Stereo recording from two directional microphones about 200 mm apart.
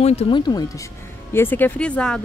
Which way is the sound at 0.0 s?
30° left (ahead or behind).